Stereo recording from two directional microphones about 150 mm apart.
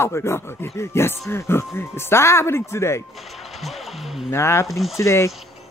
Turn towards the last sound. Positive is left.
turn(degrees=20)  # may be behind; listen again after turning